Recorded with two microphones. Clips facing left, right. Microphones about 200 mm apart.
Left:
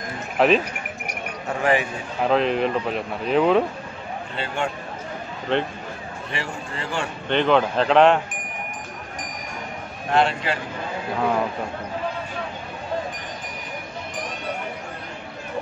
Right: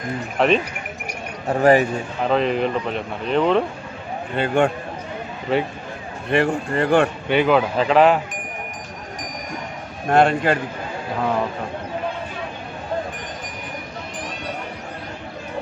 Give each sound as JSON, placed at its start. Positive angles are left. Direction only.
{"t": 0.4, "sound": "speech", "side_deg": 0}
{"t": 1.5, "sound": "speech", "side_deg": -40}
{"t": 2.2, "sound": "speech", "side_deg": 0}
{"t": 4.4, "sound": "a man's voice", "side_deg": -55}
{"t": 5.5, "sound": "speech", "side_deg": -5}
{"t": 6.3, "sound": "a man's voice", "side_deg": -55}
{"t": 7.2, "sound": "speech", "side_deg": -5}
{"t": 10.0, "sound": "a man's voice", "side_deg": -50}